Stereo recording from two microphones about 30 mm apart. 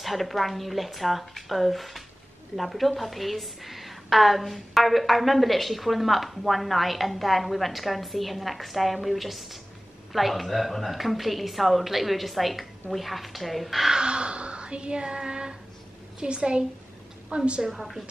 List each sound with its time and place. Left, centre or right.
0.0 s a woman's voice: centre
13.9 s a sound: right
16.2 s a woman's voice: right